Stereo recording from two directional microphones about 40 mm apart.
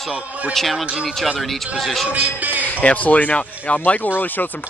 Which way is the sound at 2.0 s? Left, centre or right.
Right.